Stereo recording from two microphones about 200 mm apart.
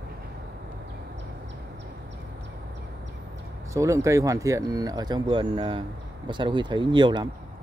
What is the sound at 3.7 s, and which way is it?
Speech, 15° right (ahead or behind).